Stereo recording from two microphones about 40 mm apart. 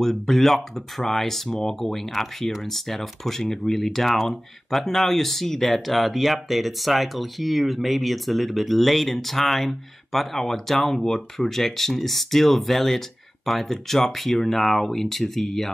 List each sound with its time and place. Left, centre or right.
0.0 s speech: centre
1.5 s speech: centre
1.8 s speech: centre